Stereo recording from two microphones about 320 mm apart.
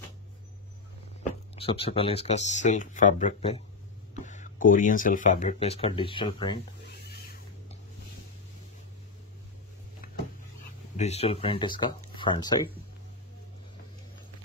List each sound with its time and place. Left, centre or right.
1.5 s speech: centre
11.0 s speech: centre